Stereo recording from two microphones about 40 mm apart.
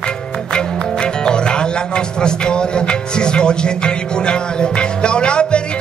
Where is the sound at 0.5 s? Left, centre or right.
Left.